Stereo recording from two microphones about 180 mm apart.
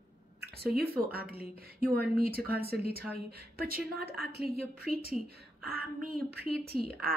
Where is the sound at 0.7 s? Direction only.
60° right (ahead or behind).